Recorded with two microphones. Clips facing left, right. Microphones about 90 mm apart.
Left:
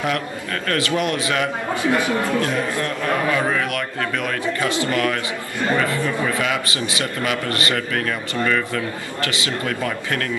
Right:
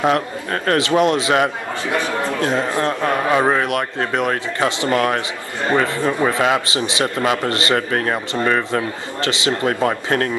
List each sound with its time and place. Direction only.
0.0 s a man's voice: 25° right (ahead or behind)
9.2 s a man's voice: 25° right (ahead or behind)